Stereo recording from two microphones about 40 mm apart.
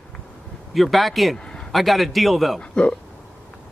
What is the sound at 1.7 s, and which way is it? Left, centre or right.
Speech, centre.